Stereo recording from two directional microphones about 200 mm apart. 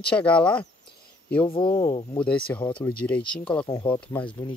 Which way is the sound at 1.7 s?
15° left (ahead or behind).